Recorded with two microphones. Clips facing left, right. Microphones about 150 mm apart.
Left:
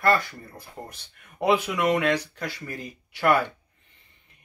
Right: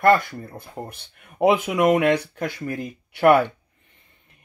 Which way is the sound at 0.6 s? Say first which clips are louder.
Right 5 dB; 55° right (ahead or behind).